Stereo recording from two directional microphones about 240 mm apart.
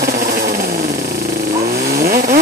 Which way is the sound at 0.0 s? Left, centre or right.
Right.